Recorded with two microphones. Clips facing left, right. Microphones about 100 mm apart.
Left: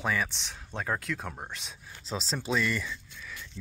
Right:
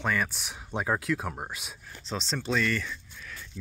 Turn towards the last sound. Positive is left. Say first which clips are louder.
# even
turn(degrees=-5)  # may be behind; listen again after turning